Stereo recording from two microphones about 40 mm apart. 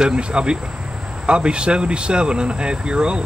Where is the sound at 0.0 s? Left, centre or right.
Right.